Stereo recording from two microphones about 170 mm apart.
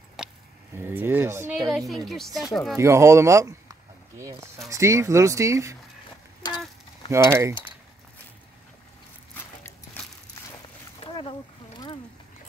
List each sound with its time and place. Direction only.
0.2 s a sound: 5° right (ahead or behind)
0.7 s speech: 15° right (ahead or behind)
1.7 s speech: centre (ahead or behind)
2.8 s speech: 15° right (ahead or behind)
7.1 s speech: 15° right (ahead or behind)
11.1 s a sound: 30° left (ahead or behind)